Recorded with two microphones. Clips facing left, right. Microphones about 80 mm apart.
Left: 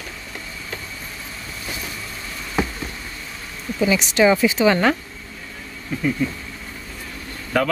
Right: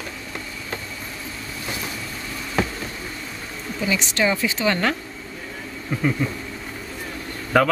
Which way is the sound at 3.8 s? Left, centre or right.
Centre.